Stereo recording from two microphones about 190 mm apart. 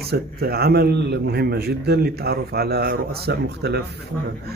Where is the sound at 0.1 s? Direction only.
55° right (ahead or behind).